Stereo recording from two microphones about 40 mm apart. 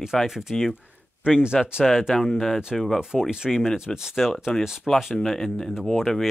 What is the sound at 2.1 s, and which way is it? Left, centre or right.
Speech, centre.